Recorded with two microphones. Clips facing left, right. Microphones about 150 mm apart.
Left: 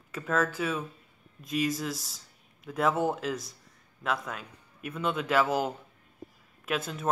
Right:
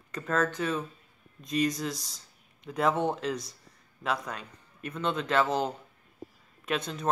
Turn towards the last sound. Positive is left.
turn(degrees=5)  # may be behind; listen again after turning